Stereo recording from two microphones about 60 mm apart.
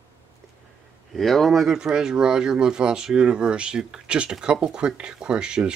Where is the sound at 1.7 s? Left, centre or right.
Centre.